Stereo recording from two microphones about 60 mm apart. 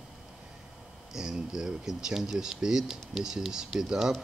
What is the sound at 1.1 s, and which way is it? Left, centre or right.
Speech, centre.